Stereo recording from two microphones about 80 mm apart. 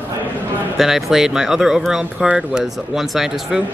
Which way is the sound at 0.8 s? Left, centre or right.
Centre.